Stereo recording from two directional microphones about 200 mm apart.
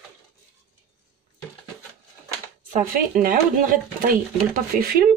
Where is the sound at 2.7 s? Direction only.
45° right (ahead or behind).